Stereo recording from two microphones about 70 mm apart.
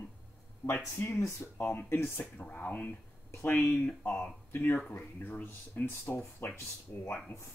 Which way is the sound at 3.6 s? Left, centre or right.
Left.